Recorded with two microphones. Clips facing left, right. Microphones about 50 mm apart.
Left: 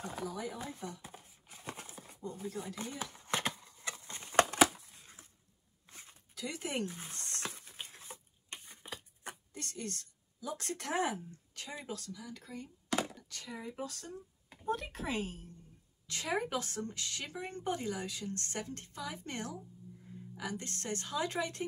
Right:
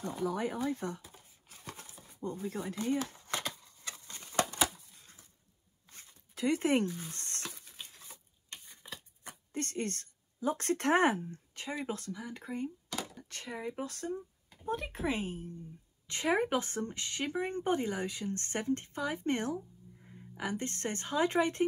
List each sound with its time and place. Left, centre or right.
0.2 s speech: right
1.6 s a sound: left
2.1 s speech: right
3.0 s a sound: left
6.3 s speech: right
6.9 s speech: left
7.3 s a sound: left
9.5 s a woman's voice: right
11.5 s speech: right
14.7 s a woman's voice: right